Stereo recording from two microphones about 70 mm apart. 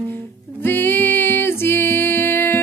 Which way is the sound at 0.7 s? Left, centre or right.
Left.